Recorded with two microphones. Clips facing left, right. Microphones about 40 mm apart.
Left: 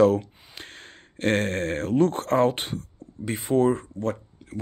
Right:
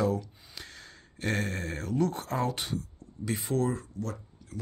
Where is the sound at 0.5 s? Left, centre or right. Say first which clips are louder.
Left 4 dB; left.